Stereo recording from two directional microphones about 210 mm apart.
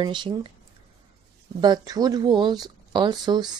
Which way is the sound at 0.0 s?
20° right (ahead or behind).